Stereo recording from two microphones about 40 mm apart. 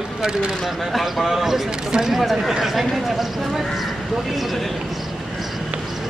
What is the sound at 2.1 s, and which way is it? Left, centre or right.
Speech, centre.